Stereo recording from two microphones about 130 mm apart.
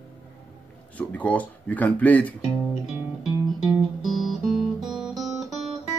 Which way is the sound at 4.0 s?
Centre (ahead or behind).